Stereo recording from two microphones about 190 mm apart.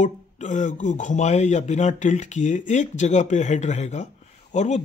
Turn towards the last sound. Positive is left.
turn(degrees=40)  # may be behind; listen again after turning